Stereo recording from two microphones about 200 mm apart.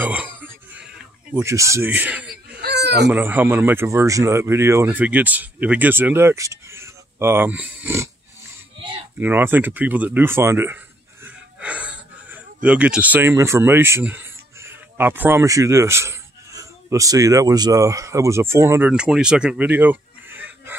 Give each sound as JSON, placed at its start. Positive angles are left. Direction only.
{"t": 0.0, "sound": "a sound", "side_deg": -10}
{"t": 2.6, "sound": "fowl", "side_deg": -55}
{"t": 3.1, "sound": "speech", "side_deg": -10}
{"t": 9.2, "sound": "speech", "side_deg": -10}
{"t": 11.2, "sound": "wheeze", "side_deg": -5}
{"t": 12.6, "sound": "speech", "side_deg": -5}